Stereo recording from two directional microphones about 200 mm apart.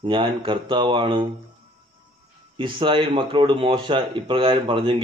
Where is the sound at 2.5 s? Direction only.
25° right (ahead or behind).